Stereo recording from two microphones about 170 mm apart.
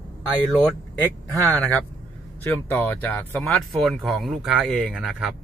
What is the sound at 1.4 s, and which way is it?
Speech, 10° left (ahead or behind).